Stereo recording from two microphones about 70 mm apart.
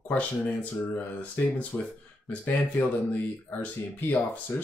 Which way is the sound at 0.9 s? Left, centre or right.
Left.